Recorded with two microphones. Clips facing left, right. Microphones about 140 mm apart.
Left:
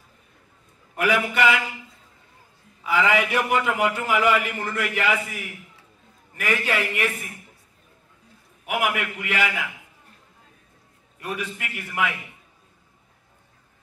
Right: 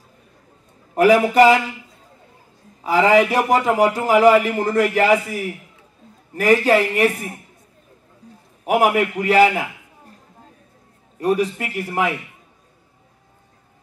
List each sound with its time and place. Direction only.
0.9 s a man's voice: 35° right (ahead or behind)
2.8 s a man's voice: 35° right (ahead or behind)
8.6 s a sound: 35° right (ahead or behind)
11.1 s a man's voice: 35° right (ahead or behind)